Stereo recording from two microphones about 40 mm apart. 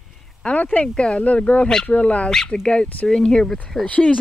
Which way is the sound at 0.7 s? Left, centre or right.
Left.